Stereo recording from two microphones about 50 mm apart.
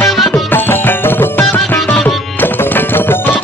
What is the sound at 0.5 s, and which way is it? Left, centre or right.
Music, left.